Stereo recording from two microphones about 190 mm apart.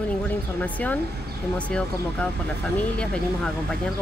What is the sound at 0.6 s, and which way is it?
Speech, 10° left (ahead or behind).